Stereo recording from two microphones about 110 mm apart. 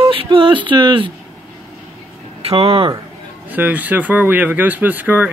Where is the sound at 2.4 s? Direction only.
65° right (ahead or behind).